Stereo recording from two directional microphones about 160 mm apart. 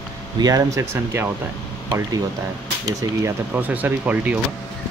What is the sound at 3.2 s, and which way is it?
Speech, 10° right (ahead or behind).